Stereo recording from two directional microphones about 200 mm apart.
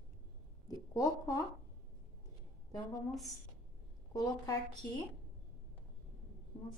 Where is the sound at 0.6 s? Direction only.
15° left (ahead or behind).